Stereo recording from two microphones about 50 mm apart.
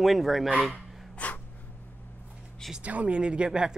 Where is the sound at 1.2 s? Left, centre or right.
Left.